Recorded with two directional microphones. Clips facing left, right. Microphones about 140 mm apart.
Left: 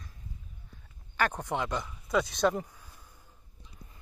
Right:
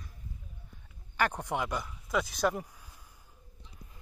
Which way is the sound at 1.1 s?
15° right (ahead or behind).